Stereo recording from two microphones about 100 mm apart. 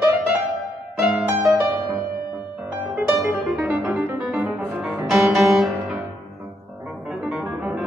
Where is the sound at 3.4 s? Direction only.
5° right (ahead or behind).